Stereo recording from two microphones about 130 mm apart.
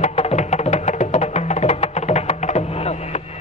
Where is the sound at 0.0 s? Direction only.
55° left (ahead or behind).